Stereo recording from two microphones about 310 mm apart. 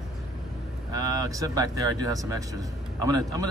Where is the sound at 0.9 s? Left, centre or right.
Centre.